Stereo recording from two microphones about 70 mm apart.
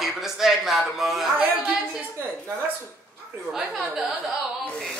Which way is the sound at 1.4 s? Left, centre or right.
Right.